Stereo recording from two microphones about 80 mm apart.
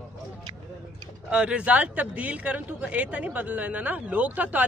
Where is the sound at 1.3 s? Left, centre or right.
Centre.